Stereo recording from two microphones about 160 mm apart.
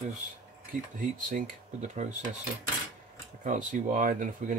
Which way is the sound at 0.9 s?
50° right (ahead or behind).